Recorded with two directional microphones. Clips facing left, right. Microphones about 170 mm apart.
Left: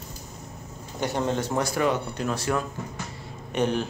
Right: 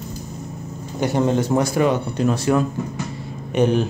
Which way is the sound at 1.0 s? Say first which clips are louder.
Right 7 dB; 10° right (ahead or behind).